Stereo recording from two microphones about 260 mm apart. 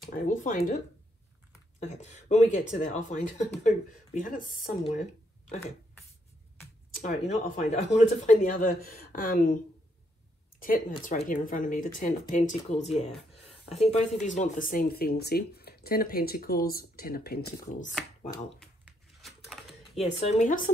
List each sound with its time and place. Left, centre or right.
0.0 s speech: left
2.0 s speech: left
6.9 s speech: left
11.1 s speech: left
18.6 s a sound: centre
20.0 s speech: left